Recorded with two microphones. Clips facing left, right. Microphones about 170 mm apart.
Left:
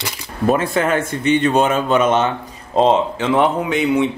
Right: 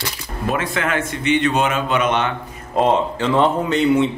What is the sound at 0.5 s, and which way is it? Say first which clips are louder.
A man's voice: left 5 dB; 35° left (ahead or behind).